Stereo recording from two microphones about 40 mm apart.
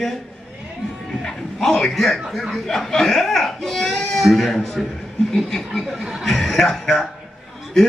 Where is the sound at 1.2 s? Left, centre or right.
Centre.